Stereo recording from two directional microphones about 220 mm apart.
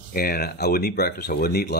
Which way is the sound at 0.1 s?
45° left (ahead or behind).